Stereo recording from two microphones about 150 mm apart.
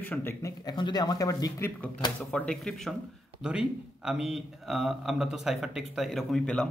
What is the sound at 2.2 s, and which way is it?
A man's voice, 10° left (ahead or behind).